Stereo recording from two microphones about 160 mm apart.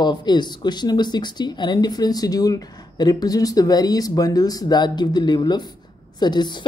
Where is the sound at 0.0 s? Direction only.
30° left (ahead or behind).